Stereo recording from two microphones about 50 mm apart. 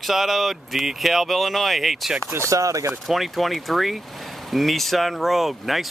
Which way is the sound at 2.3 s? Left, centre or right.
Right.